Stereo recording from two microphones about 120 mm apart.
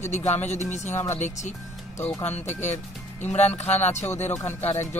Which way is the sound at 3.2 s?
65° left (ahead or behind).